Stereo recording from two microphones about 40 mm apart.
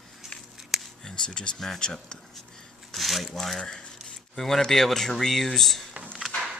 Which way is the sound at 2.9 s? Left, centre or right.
Centre.